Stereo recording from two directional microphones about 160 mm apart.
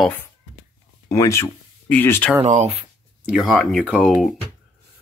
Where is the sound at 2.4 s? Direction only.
45° right (ahead or behind).